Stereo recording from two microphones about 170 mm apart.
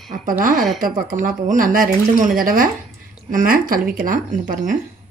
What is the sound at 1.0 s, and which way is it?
Speech, 55° right (ahead or behind).